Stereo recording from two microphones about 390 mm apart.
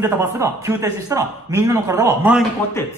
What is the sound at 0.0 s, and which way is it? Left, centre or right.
A man's voice, centre.